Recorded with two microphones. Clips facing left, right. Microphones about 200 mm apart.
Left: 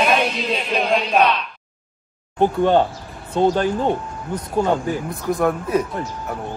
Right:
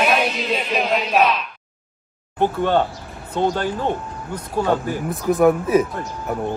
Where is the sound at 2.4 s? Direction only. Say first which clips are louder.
Left 3 dB; 15° left (ahead or behind).